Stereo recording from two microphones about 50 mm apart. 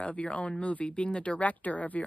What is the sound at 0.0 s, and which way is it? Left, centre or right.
Speech, left.